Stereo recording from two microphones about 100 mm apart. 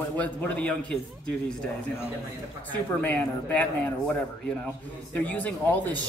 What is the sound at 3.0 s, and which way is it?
Speech, 15° left (ahead or behind).